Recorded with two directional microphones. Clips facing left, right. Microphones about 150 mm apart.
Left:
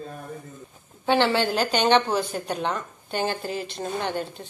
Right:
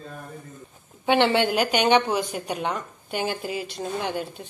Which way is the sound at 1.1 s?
20° right (ahead or behind).